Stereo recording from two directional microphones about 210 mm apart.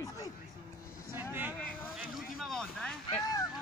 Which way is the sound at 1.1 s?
10° right (ahead or behind).